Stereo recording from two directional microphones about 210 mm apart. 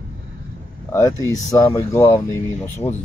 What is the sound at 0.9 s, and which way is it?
Speech, 15° left (ahead or behind).